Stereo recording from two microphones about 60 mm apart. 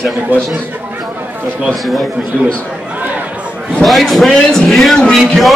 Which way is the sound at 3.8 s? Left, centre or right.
Centre.